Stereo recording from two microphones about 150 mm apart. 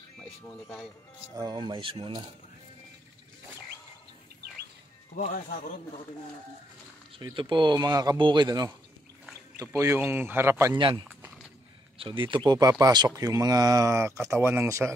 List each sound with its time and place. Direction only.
0.2 s speech: 5° left (ahead or behind)
1.3 s speech: 25° right (ahead or behind)
5.1 s speech: 65° left (ahead or behind)
7.2 s speech: 30° right (ahead or behind)
10.8 s speech: 35° right (ahead or behind); by 15.0 s 20° right (ahead or behind)